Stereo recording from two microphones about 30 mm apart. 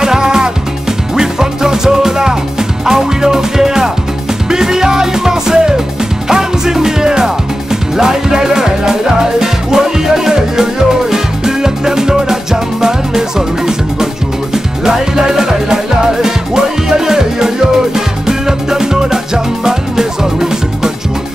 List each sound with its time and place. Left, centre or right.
0.0 s music: centre
14.5 s music: centre